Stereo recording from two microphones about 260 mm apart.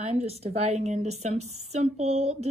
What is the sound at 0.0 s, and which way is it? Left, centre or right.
A woman's voice, right.